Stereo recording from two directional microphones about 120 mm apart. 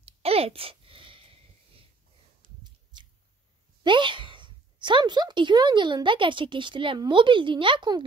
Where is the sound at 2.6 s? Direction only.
40° right (ahead or behind).